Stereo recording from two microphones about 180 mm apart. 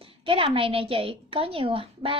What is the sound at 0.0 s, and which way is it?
A woman's voice, 30° right (ahead or behind).